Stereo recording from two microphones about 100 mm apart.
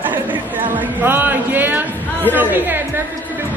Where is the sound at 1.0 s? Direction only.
20° right (ahead or behind).